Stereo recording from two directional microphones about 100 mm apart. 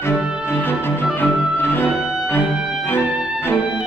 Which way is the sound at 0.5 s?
20° left (ahead or behind).